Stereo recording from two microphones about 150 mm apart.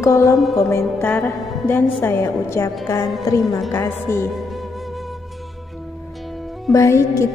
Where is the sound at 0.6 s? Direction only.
20° left (ahead or behind).